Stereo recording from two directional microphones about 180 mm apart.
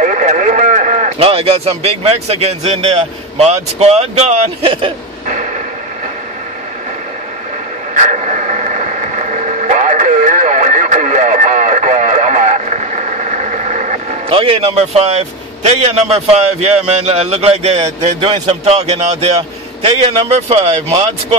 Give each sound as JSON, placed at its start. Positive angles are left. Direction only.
{"t": 0.0, "sound": "a man's voice", "side_deg": -45}
{"t": 7.9, "sound": "a sound", "side_deg": -45}
{"t": 14.3, "sound": "a man's voice", "side_deg": -30}